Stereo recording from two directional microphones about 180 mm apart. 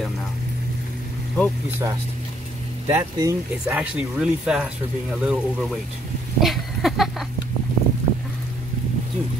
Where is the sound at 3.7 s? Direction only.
5° right (ahead or behind).